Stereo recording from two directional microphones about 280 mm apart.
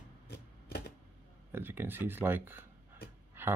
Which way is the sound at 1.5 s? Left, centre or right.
Centre.